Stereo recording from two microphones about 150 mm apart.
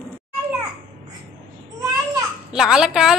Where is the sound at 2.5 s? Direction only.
5° right (ahead or behind).